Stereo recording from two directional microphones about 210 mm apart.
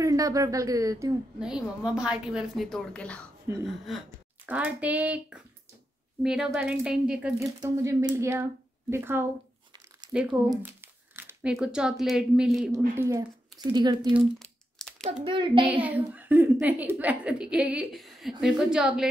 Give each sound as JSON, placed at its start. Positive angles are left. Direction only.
{"t": 0.0, "sound": "speech", "side_deg": -15}
{"t": 1.4, "sound": "a woman's voice", "side_deg": -5}
{"t": 7.3, "sound": "a woman's voice", "side_deg": -15}
{"t": 10.5, "sound": "crumpling", "side_deg": -10}
{"t": 11.5, "sound": "a woman's voice", "side_deg": -5}
{"t": 12.7, "sound": "speech", "side_deg": -15}
{"t": 14.4, "sound": "crumpling", "side_deg": 0}
{"t": 15.2, "sound": "speech", "side_deg": -25}
{"t": 15.6, "sound": "a woman's voice", "side_deg": -5}